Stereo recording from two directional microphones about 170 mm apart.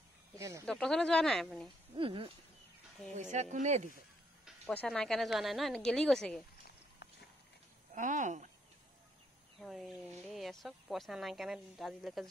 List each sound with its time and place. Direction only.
0.4 s speech: 20° right (ahead or behind)
0.7 s speech: 5° left (ahead or behind)
2.0 s speech: 30° right (ahead or behind)
3.2 s speech: 45° right (ahead or behind)
4.7 s speech: 5° left (ahead or behind)
7.9 s speech: 45° right (ahead or behind)
9.6 s speech: centre (ahead or behind)